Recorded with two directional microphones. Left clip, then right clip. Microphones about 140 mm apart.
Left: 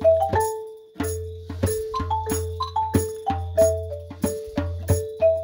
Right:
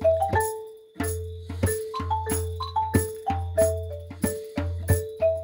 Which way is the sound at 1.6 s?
5° left (ahead or behind).